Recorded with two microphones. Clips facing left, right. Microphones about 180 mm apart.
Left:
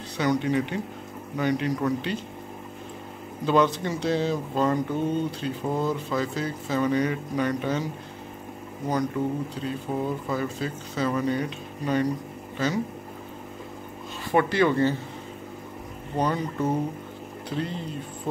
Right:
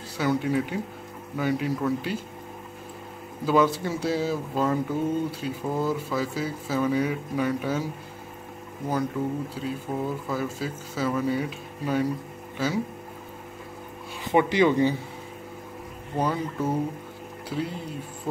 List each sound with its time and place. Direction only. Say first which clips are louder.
0.2 s speech: left 1 dB; 5° right (ahead or behind)
3.4 s speech: even; 5° right (ahead or behind)
9.2 s speech: left 1 dB; 5° right (ahead or behind)
14.2 s speech: right 1 dB; 15° right (ahead or behind)
16.2 s speech: left 1 dB; 5° right (ahead or behind)